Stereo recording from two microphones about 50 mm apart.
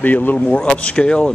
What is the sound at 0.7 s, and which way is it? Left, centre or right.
Speech, left.